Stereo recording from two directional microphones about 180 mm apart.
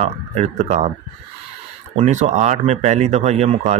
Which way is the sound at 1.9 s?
40° right (ahead or behind).